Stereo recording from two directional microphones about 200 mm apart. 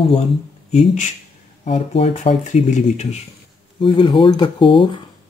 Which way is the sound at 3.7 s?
25° left (ahead or behind).